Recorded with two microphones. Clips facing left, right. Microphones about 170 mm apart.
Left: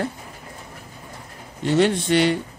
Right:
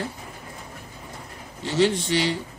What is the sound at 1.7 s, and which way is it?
Speech, 55° left (ahead or behind).